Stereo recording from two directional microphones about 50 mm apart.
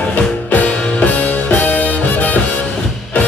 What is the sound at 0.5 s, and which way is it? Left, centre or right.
Music, left.